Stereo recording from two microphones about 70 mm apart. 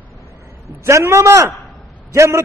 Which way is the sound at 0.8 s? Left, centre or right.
Right.